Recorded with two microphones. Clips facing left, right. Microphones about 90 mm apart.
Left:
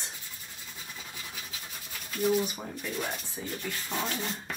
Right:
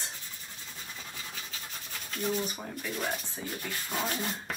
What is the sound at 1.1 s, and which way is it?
Scratch, 5° left (ahead or behind).